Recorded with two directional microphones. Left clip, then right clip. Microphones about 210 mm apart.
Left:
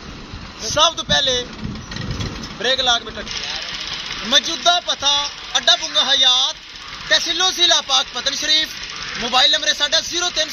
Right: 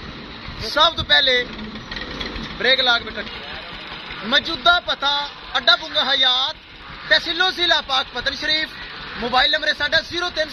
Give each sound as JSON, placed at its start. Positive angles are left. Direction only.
{"t": 0.7, "sound": "speech", "side_deg": -10}
{"t": 2.0, "sound": "vehicle", "side_deg": 55}
{"t": 2.6, "sound": "speech", "side_deg": -15}
{"t": 4.3, "sound": "speech", "side_deg": -10}